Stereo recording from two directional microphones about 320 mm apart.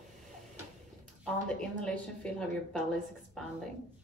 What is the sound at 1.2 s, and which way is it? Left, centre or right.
A woman's voice, centre.